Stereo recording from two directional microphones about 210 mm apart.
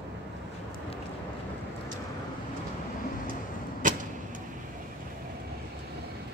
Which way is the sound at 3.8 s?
40° right (ahead or behind).